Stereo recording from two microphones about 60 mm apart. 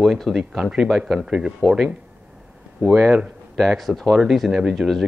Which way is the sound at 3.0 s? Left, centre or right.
Right.